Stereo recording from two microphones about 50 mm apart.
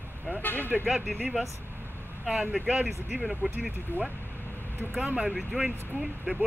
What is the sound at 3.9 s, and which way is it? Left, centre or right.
Speech, left.